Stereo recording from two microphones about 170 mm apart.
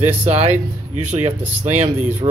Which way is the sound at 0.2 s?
40° right (ahead or behind).